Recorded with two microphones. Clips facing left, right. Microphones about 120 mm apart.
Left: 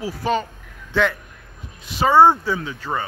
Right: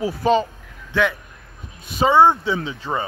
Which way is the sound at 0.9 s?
10° right (ahead or behind).